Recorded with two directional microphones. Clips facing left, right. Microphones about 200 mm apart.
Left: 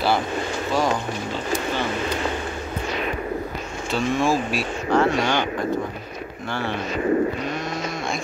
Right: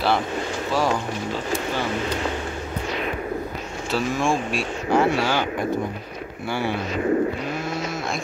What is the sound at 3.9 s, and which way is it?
Speech, centre (ahead or behind).